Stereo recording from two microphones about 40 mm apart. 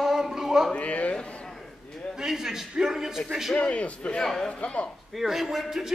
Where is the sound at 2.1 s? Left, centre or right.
Centre.